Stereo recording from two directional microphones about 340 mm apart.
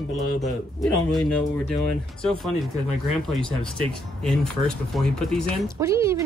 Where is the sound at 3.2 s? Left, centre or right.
Centre.